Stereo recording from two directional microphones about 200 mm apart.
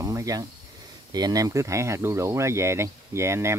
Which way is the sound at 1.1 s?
20° right (ahead or behind).